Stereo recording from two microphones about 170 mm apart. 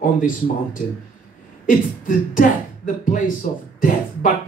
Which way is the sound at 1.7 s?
50° left (ahead or behind).